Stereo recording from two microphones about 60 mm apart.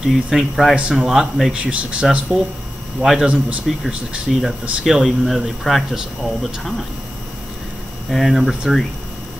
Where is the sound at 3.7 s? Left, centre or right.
Centre.